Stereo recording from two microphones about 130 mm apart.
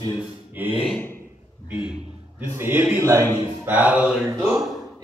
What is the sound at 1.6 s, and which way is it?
A man's voice, 10° right (ahead or behind).